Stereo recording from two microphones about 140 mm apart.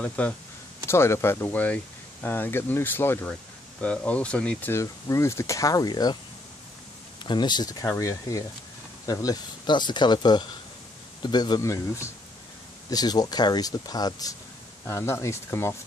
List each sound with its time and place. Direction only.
0.0 s speech: 10° left (ahead or behind); by 6.1 s 30° left (ahead or behind)
7.2 s speech: 30° left (ahead or behind)